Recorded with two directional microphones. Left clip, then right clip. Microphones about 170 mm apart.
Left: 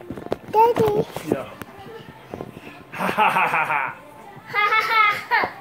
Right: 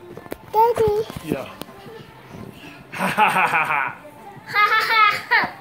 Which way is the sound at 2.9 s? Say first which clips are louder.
Right 1 dB; 20° right (ahead or behind).